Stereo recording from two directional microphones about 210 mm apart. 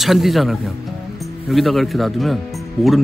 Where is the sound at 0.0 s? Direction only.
Centre (ahead or behind).